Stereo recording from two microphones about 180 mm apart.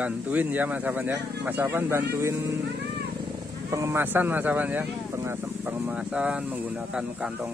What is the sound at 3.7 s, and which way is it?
Speech, 15° right (ahead or behind).